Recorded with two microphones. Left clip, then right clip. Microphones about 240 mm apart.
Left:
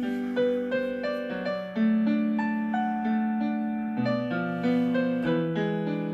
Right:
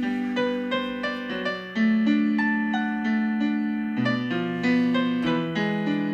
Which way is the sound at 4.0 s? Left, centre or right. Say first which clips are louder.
Right 1 dB; right.